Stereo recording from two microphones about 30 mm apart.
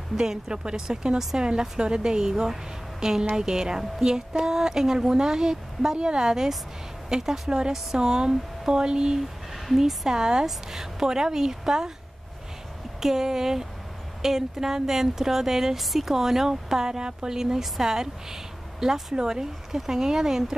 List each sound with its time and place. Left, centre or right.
0.1 s speech: centre
0.5 s a woman's voice: right
13.0 s speech: centre
15.8 s speech: centre